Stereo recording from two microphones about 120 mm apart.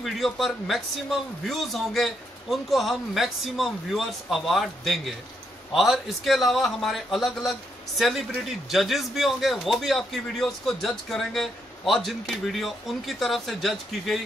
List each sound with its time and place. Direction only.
0.0 s a man's voice: centre (ahead or behind)